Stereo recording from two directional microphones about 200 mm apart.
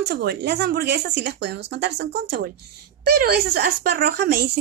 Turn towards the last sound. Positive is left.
turn(degrees=-55)  # may be behind; listen again after turning